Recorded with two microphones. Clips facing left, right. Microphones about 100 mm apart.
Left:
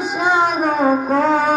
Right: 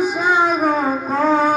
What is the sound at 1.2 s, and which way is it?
Music, 20° left (ahead or behind).